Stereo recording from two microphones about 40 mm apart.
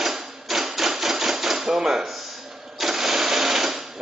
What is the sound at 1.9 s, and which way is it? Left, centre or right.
Speech, centre.